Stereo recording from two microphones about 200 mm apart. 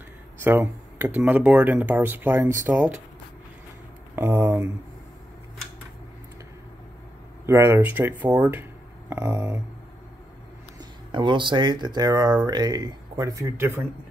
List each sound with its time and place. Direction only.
0.4 s speech: 10° right (ahead or behind)
4.1 s speech: 10° right (ahead or behind)
7.4 s speech: 15° right (ahead or behind)
10.8 s speech: 25° right (ahead or behind)